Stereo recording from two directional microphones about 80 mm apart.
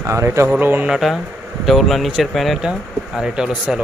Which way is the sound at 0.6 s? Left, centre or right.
Right.